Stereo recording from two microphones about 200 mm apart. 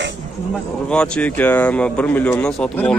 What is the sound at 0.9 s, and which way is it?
Speech, 5° left (ahead or behind).